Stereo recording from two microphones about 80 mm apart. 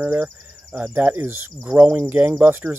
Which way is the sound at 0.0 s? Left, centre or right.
Right.